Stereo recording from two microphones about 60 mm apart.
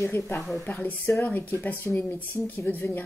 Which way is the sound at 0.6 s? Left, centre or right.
Left.